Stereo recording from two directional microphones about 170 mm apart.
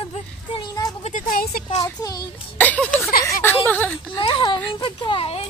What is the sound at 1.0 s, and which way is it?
Speech, 50° left (ahead or behind).